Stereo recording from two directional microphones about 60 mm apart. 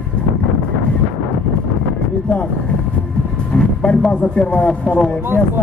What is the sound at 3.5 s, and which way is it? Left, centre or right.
Speech, centre.